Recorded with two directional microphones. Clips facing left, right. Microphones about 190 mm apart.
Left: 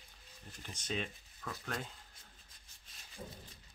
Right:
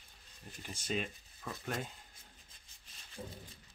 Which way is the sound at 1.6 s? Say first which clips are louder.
Right 3 dB; 20° right (ahead or behind).